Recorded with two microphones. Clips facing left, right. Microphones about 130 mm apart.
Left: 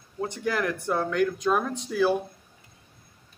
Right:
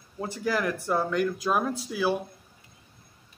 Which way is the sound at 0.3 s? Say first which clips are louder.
Right 1 dB; 5° right (ahead or behind).